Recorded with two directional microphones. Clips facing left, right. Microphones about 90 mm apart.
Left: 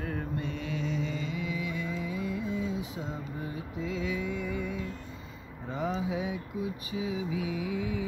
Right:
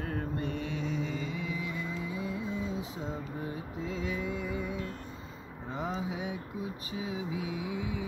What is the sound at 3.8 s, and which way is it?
Mantra, 35° right (ahead or behind).